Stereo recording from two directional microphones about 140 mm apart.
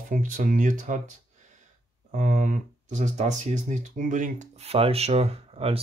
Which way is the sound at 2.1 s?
65° right (ahead or behind).